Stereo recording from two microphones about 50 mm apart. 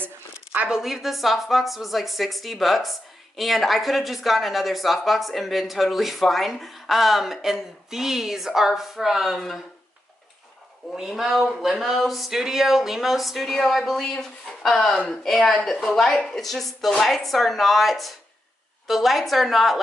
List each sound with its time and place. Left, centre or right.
0.5 s a woman's voice: centre
11.0 s a woman's voice: centre
14.9 s speech: centre
15.2 s a woman's voice: centre